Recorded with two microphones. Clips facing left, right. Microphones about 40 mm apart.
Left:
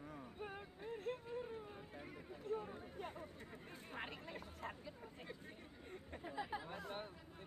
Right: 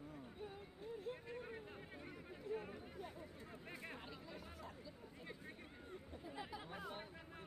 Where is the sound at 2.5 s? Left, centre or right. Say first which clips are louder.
Left 2 dB; left.